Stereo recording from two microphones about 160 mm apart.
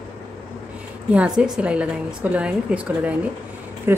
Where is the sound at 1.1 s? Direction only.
5° right (ahead or behind).